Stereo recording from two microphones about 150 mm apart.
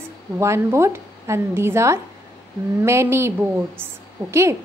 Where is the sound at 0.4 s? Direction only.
20° right (ahead or behind).